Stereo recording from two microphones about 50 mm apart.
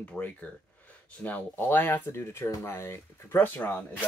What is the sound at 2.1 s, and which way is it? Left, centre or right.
Speech, left.